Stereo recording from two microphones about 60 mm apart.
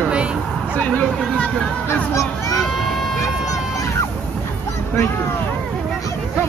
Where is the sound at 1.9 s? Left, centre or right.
Left.